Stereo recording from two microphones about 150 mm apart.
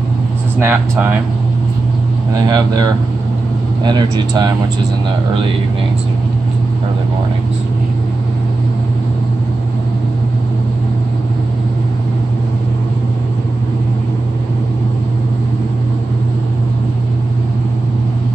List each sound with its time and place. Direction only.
0.6 s speech: 15° right (ahead or behind)
2.4 s speech: 25° right (ahead or behind)